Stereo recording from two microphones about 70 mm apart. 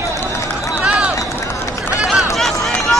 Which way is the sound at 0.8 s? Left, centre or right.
Centre.